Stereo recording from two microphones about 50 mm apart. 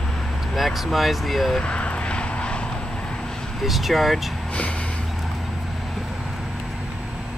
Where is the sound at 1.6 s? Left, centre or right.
Left.